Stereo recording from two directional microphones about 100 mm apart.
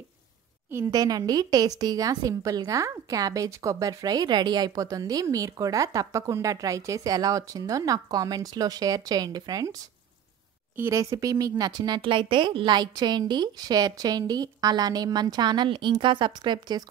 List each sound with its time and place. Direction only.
0.7 s a woman's voice: 30° right (ahead or behind)
10.8 s a woman's voice: 35° right (ahead or behind)
12.0 s a woman's voice: 60° right (ahead or behind)